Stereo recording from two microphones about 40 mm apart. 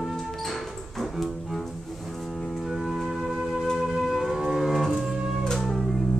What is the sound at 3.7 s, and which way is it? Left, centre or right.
Music, centre.